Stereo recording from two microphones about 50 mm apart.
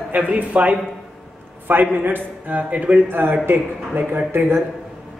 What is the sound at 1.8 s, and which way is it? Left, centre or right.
A man's voice, right.